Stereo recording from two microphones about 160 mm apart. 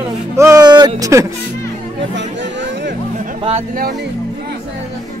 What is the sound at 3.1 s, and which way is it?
Music, 55° right (ahead or behind).